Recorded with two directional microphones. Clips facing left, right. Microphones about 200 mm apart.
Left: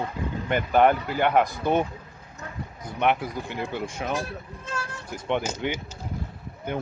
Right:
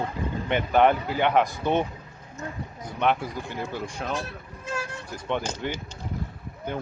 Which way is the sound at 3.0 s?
15° left (ahead or behind).